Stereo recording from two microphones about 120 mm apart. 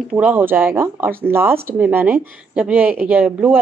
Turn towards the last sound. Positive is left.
turn(degrees=-10)  # may be behind; listen again after turning